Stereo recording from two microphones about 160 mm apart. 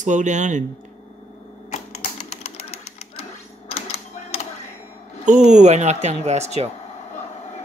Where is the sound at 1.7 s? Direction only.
45° left (ahead or behind).